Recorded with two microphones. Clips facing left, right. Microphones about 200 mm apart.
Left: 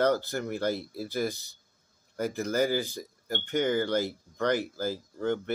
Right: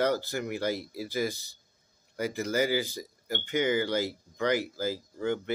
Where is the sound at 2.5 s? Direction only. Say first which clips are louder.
Even; 10° right (ahead or behind).